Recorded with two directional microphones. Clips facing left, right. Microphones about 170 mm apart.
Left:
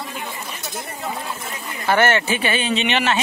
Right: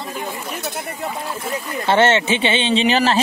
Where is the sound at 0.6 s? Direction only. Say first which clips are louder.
Right 5 dB; 60° right (ahead or behind).